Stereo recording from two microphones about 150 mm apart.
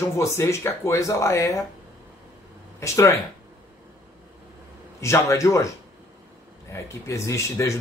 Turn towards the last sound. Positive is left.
turn(degrees=20)  # may be behind; listen again after turning